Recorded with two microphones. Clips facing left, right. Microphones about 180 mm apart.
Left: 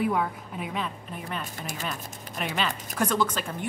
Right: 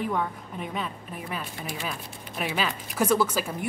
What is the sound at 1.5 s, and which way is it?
Speech, 45° left (ahead or behind).